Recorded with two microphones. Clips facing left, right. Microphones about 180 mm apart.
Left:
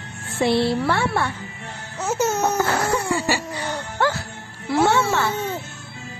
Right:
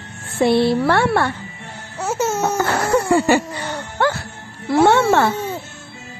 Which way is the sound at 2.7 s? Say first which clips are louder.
Right 5 dB; 55° right (ahead or behind).